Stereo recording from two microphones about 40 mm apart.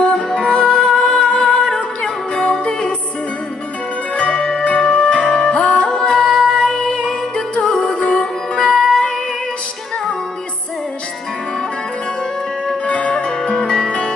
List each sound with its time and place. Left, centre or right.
0.0 s music: left
4.2 s zither: centre
4.6 s music: left; by 7.0 s centre
7.7 s music: left
8.7 s music: centre
12.9 s music: left
13.4 s music: centre